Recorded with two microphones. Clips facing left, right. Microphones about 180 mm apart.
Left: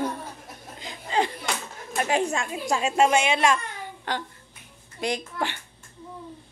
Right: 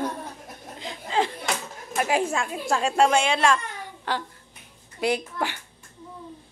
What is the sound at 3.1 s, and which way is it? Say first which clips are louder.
Speech: even; 15° left (ahead or behind).